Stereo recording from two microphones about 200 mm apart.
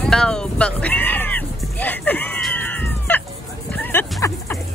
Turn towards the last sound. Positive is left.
turn(degrees=15)  # may be behind; listen again after turning